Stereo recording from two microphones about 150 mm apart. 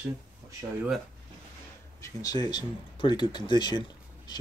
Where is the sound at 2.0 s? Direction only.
25° left (ahead or behind).